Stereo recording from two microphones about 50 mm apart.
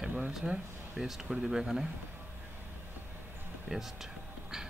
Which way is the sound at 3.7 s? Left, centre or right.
Right.